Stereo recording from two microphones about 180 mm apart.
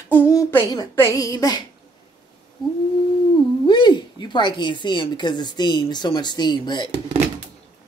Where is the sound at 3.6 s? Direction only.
25° left (ahead or behind).